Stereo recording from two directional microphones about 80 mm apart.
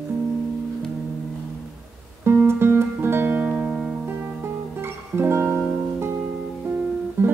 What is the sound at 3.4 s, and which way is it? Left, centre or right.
Music, centre.